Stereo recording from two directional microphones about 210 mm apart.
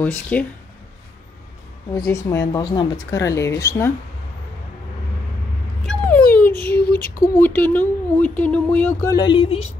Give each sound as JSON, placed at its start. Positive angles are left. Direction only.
{"t": 0.0, "sound": "speech", "side_deg": 5}
{"t": 2.0, "sound": "speech", "side_deg": 15}
{"t": 5.9, "sound": "a sound", "side_deg": 5}
{"t": 6.8, "sound": "female singing", "side_deg": 45}
{"t": 7.3, "sound": "speech", "side_deg": 10}